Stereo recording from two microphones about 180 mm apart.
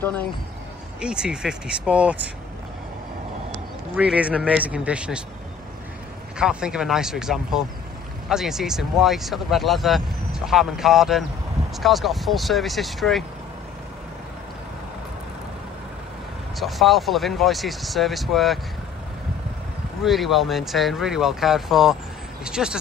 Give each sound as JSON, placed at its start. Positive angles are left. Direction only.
{"t": 1.0, "sound": "speech", "side_deg": -5}
{"t": 3.9, "sound": "speech", "side_deg": -5}
{"t": 6.3, "sound": "speech", "side_deg": -5}
{"t": 16.5, "sound": "speech", "side_deg": 0}
{"t": 20.0, "sound": "speech", "side_deg": 0}